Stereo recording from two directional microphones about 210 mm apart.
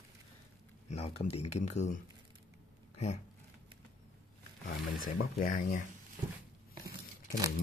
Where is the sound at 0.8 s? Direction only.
30° left (ahead or behind).